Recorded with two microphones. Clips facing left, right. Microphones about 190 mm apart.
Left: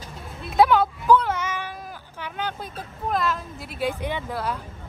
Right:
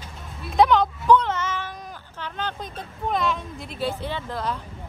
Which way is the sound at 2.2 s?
10° left (ahead or behind).